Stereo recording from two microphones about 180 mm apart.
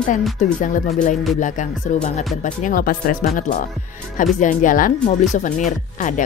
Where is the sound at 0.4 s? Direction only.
45° left (ahead or behind).